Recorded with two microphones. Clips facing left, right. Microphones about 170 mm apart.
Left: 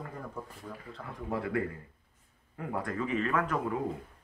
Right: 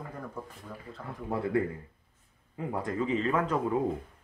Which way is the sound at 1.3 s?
25° right (ahead or behind).